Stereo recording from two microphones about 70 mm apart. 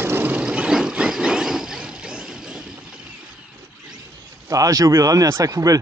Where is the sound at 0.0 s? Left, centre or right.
Right.